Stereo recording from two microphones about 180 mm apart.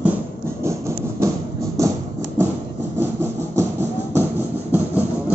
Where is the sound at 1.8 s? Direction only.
15° right (ahead or behind).